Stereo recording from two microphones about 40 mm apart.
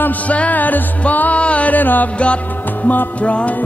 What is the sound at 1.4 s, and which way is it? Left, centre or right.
Music, left.